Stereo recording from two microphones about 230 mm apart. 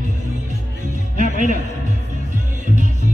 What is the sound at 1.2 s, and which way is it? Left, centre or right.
Music, right.